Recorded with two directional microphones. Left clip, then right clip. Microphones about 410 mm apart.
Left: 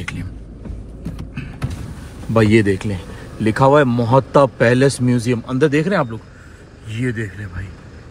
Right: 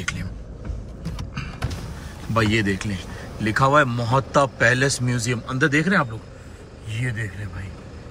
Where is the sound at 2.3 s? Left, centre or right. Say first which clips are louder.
Left 7 dB; centre.